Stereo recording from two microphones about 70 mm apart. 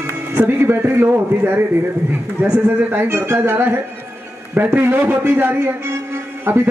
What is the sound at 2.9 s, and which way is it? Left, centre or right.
A man's voice, right.